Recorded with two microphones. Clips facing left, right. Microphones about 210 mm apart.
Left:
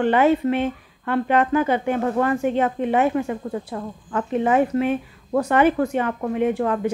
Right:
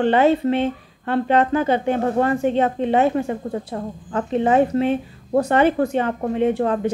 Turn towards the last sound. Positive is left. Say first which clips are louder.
# right 2 dB
turn(degrees=-30)  # may be behind; listen again after turning